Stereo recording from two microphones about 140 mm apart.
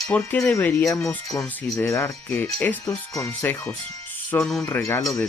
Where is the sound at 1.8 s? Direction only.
20° left (ahead or behind).